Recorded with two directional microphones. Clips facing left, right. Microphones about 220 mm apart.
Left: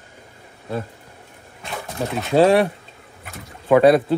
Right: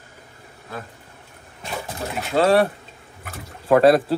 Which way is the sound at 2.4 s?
15° left (ahead or behind).